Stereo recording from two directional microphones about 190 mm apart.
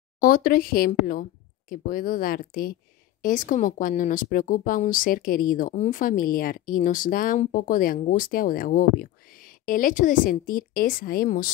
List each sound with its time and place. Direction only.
0.2 s speech: 50° left (ahead or behind)